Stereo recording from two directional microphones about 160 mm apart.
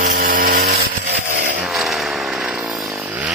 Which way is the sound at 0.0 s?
60° right (ahead or behind).